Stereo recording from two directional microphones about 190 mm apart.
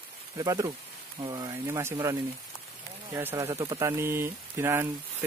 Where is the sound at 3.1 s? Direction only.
15° right (ahead or behind).